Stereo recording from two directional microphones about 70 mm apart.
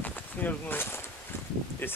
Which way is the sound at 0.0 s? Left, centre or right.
Left.